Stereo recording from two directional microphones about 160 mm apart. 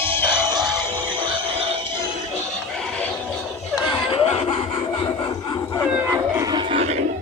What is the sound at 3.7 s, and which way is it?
Snicker, 30° left (ahead or behind).